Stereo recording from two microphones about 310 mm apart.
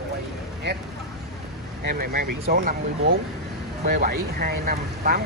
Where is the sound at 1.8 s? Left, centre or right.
Right.